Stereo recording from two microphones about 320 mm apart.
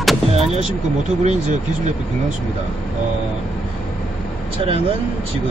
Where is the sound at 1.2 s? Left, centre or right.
Right.